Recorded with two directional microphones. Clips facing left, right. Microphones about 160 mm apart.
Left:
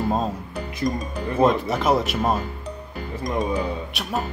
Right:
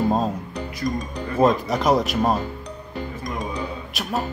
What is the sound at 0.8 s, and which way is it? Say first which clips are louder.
Speech: even; 20° left (ahead or behind).